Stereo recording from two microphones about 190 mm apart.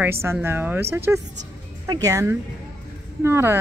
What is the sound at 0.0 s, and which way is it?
A woman's voice, 15° right (ahead or behind).